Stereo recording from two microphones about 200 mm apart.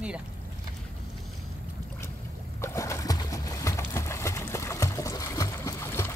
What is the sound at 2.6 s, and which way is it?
Boat, 15° left (ahead or behind).